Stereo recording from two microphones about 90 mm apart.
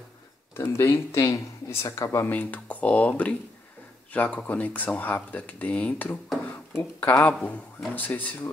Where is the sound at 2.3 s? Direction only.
20° left (ahead or behind).